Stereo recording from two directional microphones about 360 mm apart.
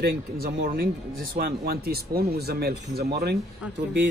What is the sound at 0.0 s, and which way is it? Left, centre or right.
Speech, right.